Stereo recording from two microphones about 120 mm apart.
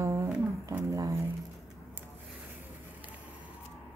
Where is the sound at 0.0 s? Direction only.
25° right (ahead or behind).